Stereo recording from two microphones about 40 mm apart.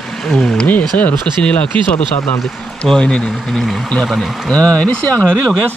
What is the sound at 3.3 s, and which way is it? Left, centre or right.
Speech, centre.